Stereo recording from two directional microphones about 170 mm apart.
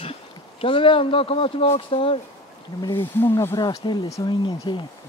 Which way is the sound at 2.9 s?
15° left (ahead or behind).